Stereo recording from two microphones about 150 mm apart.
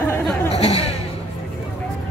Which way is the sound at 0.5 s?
45° left (ahead or behind).